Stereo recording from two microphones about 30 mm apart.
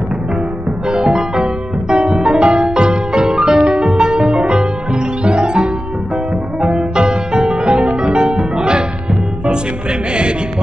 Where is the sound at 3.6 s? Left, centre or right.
Right.